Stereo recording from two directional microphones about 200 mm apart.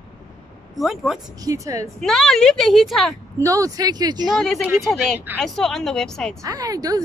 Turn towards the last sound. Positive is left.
turn(degrees=-20)  # may be behind; listen again after turning